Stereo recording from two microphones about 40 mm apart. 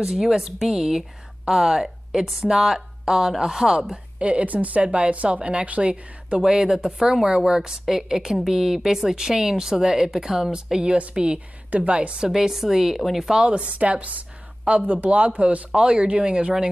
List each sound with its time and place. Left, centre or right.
0.1 s speech: centre
4.3 s a woman's voice: right
6.4 s speech: centre
10.8 s a woman's voice: right
12.3 s speech: centre
13.3 s a woman's voice: right
15.7 s speech: right